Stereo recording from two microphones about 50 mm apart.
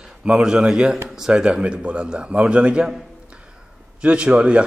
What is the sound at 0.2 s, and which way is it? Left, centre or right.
A man's voice, centre.